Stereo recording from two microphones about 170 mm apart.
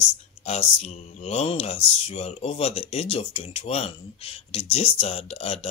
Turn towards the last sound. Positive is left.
turn(degrees=35)  # may be behind; listen again after turning